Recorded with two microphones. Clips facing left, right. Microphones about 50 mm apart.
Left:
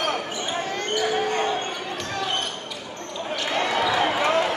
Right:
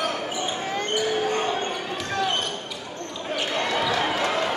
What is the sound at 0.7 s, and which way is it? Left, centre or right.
Basketball bounce, centre.